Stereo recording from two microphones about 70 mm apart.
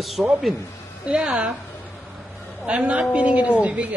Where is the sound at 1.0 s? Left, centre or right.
Centre.